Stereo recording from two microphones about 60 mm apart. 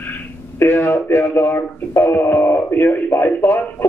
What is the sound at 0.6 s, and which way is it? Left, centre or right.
Speech, left.